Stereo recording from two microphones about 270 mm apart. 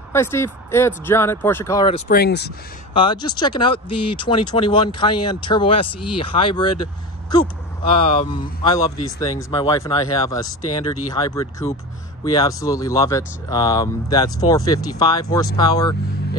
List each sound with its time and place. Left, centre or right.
0.1 s speech: centre
2.0 s speech: left
2.9 s speech: centre